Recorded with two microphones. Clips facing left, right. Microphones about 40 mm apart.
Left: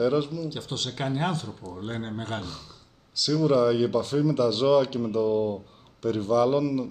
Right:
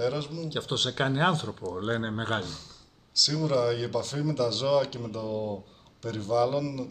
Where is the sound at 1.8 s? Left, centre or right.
Right.